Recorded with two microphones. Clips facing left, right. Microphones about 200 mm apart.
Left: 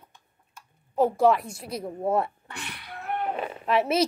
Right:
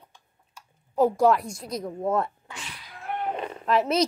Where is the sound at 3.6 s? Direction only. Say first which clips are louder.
Right 1 dB; 5° left (ahead or behind).